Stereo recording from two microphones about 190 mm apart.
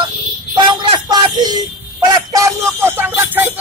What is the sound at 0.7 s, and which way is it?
A man's voice, 20° right (ahead or behind).